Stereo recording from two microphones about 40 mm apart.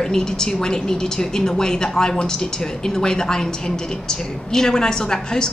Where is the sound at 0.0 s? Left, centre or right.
Centre.